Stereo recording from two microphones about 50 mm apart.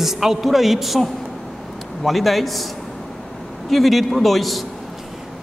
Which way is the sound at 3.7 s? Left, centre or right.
Centre.